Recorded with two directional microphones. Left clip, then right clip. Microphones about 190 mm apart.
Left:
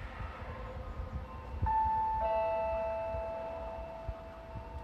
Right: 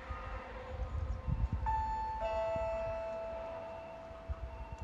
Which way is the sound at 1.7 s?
30° right (ahead or behind).